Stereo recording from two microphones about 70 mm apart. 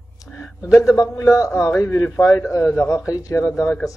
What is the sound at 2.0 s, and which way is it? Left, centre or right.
Speech, left.